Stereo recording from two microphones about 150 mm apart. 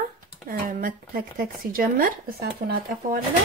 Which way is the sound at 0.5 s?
75° right (ahead or behind).